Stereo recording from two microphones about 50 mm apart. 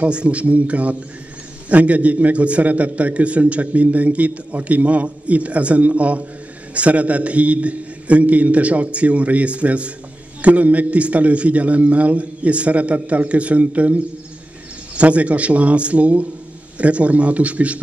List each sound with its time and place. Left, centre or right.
0.0 s a man's voice: right
15.0 s a man's voice: right